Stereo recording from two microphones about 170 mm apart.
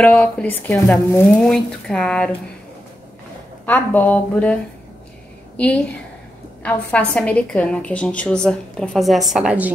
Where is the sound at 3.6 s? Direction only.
10° left (ahead or behind).